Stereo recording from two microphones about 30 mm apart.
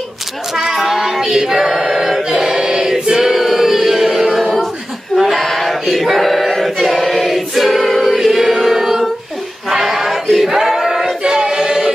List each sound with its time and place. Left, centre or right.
0.7 s child singing: centre
1.0 s female singing: centre
1.9 s choir: centre
3.3 s music: centre
4.4 s a sound: centre
5.4 s choir: centre
8.2 s choir: centre
9.7 s a sound: centre
11.2 s choir: right
11.5 s music: centre